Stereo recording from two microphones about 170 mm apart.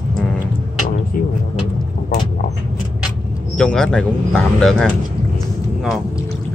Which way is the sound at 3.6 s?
5° left (ahead or behind).